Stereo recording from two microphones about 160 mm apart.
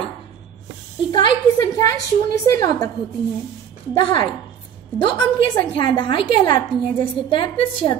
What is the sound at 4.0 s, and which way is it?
A woman's voice, 30° left (ahead or behind).